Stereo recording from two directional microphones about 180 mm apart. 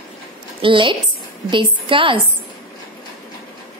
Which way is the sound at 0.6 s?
25° right (ahead or behind).